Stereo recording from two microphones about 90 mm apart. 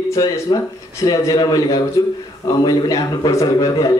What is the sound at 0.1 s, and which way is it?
A man's voice, 45° left (ahead or behind).